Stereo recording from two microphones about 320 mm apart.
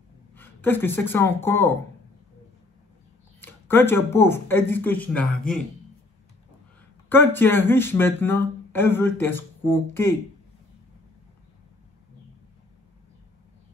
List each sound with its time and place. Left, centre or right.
0.3 s speech: centre
3.3 s speech: centre
7.1 s speech: centre